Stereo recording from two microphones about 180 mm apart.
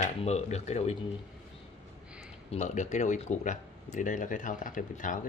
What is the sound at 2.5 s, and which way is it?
Speech, 40° left (ahead or behind).